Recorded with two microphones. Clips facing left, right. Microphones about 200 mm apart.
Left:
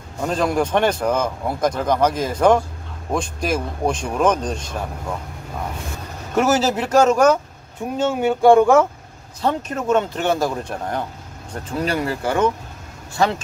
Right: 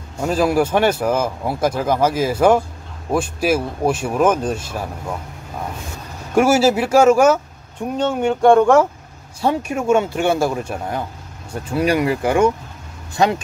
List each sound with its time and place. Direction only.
0.2 s speech: 5° right (ahead or behind)
6.3 s speech: 10° right (ahead or behind)
8.0 s speech: 5° left (ahead or behind)
9.4 s speech: 10° right (ahead or behind)